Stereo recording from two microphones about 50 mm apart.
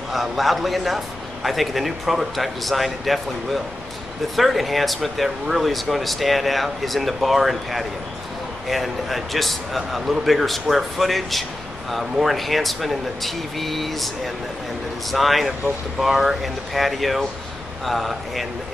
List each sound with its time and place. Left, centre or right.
0.1 s a man's voice: centre